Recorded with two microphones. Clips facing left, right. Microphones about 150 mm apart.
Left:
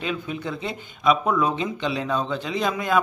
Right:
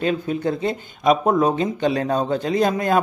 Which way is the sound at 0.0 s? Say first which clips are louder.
Right 7 dB; 45° right (ahead or behind).